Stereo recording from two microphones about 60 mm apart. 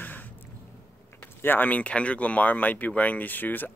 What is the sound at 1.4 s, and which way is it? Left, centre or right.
Speech, left.